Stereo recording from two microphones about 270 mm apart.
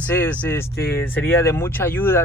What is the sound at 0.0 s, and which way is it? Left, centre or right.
Speech, centre.